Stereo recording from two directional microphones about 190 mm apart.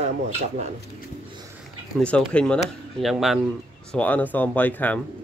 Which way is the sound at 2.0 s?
5° left (ahead or behind).